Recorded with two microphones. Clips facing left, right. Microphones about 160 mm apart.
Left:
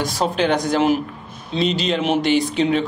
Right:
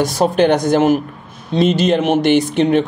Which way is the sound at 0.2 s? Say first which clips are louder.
Right 5 dB; 50° right (ahead or behind).